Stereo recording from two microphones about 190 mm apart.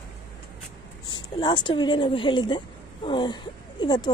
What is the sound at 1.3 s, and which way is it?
A woman's voice, 25° left (ahead or behind).